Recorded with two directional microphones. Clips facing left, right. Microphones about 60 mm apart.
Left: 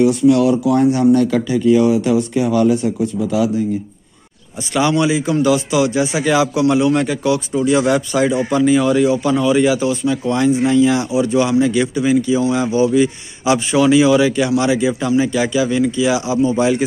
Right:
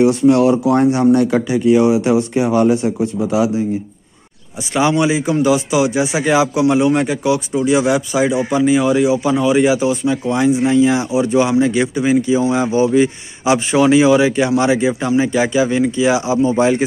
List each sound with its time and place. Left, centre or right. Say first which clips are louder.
0.0 s speech: right 1 dB; right
3.3 s a man's voice: right 1 dB; right
4.7 s a man's voice: right 1 dB; right